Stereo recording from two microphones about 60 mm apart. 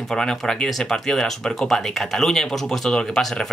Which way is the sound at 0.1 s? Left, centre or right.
Centre.